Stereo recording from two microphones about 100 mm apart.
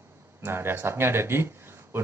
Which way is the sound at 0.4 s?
25° right (ahead or behind).